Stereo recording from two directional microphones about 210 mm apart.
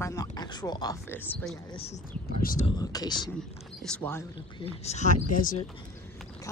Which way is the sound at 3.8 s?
5° left (ahead or behind).